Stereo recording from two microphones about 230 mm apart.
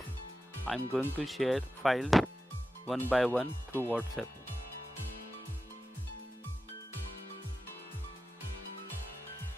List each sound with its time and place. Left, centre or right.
0.7 s speech: centre